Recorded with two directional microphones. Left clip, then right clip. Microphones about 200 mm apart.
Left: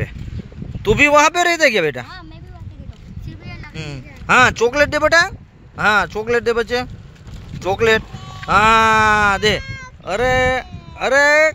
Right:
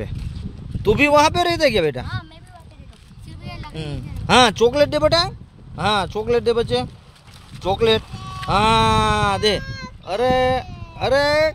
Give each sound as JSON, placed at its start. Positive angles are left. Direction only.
{"t": 0.8, "sound": "speech", "side_deg": 0}
{"t": 3.7, "sound": "speech", "side_deg": -20}